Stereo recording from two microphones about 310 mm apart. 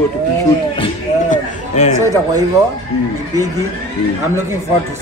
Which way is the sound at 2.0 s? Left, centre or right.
Centre.